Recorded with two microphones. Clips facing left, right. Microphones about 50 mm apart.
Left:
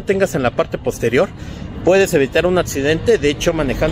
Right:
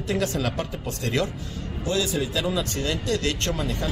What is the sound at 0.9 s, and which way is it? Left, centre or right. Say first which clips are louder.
Speech: left 11 dB; left.